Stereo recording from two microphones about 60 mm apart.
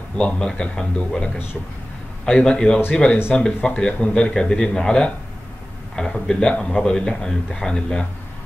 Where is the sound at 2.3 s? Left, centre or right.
Centre.